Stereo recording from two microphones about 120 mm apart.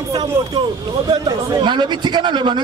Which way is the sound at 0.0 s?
35° right (ahead or behind).